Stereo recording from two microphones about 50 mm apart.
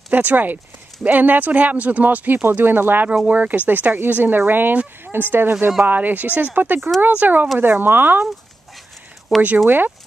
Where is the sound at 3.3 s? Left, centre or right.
Right.